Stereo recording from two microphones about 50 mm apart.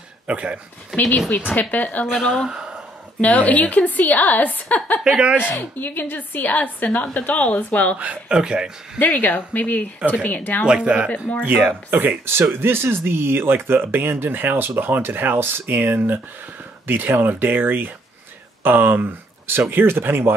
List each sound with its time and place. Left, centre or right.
0.3 s speech: right
1.3 s a woman's voice: left
2.2 s speech: centre
2.5 s a sound: centre
3.2 s a woman's voice: left
5.0 s speech: centre
5.4 s a woman's voice: left
8.3 s speech: centre
8.9 s a woman's voice: left
10.7 s speech: right
11.1 s speech: left
11.4 s speech: right